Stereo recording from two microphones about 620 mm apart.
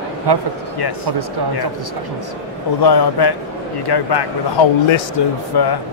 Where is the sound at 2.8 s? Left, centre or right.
Left.